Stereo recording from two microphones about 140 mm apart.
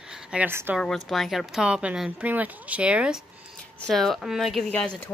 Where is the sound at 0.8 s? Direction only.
Centre (ahead or behind).